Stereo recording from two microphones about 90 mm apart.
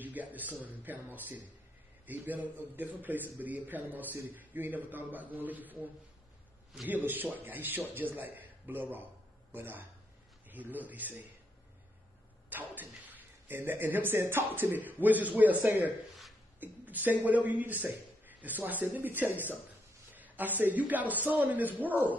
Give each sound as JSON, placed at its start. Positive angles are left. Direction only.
{"t": 0.0, "sound": "a man's voice", "side_deg": -20}
{"t": 6.9, "sound": "a man's voice", "side_deg": -20}
{"t": 12.4, "sound": "a man's voice", "side_deg": -20}